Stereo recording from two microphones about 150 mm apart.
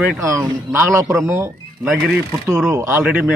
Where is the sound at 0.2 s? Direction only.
20° right (ahead or behind).